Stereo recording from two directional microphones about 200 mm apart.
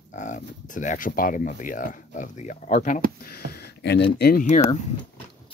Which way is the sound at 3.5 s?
55° left (ahead or behind).